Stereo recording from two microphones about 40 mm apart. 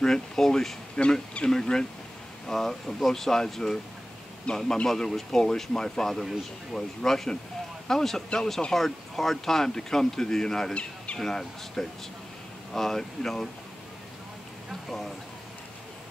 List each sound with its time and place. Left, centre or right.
0.0 s speech: centre
4.5 s a man's voice: left
4.8 s speech: centre
10.7 s speech: left
11.1 s speech: centre
14.7 s speech: centre